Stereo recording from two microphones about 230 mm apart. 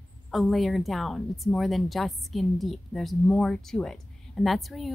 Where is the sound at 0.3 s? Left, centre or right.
Centre.